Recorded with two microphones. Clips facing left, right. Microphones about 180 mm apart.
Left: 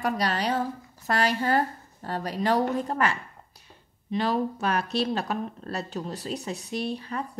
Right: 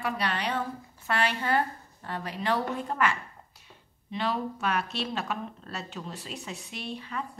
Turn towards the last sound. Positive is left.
turn(degrees=40)  # may be behind; listen again after turning